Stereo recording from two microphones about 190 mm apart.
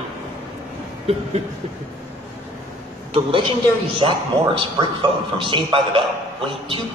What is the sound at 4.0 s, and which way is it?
A man's voice, 25° right (ahead or behind).